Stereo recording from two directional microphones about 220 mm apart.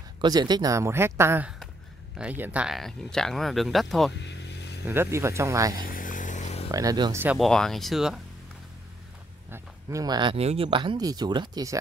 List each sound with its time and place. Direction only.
0.2 s speech: 20° right (ahead or behind); by 4.1 s centre (ahead or behind)
4.2 s vehicle: 50° left (ahead or behind)
4.8 s speech: 10° right (ahead or behind)
5.8 s a sound: 40° left (ahead or behind)
6.7 s speech: 15° right (ahead or behind)
9.5 s speech: 15° right (ahead or behind)